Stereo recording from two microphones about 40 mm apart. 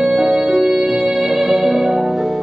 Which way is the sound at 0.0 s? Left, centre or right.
Centre.